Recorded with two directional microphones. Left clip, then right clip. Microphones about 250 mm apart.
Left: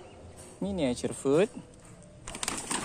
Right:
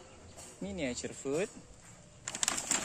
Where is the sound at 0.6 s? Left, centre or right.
Centre.